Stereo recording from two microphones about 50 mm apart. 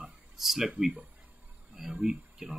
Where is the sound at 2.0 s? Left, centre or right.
Centre.